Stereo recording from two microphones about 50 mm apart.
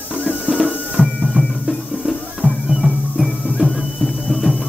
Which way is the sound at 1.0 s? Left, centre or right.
Centre.